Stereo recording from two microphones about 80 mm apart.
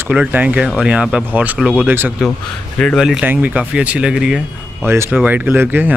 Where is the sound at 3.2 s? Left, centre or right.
Right.